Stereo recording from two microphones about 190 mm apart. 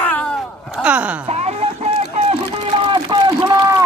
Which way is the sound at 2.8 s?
25° right (ahead or behind).